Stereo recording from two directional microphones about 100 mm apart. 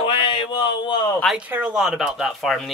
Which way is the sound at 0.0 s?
55° left (ahead or behind).